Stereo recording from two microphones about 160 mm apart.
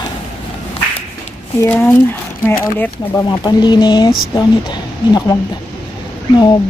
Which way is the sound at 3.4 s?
25° left (ahead or behind).